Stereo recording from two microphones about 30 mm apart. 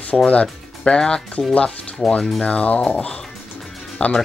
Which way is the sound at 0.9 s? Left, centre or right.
Left.